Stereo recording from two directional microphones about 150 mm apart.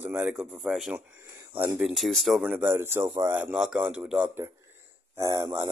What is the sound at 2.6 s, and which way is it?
Speech, 15° right (ahead or behind).